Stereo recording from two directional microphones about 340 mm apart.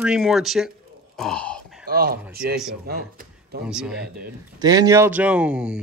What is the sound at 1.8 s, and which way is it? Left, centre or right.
Speech, right.